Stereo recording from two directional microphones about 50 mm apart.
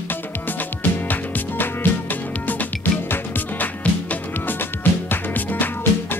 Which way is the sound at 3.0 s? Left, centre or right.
Left.